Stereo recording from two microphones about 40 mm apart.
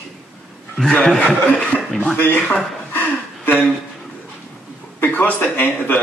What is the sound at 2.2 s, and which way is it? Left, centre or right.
Speech, left.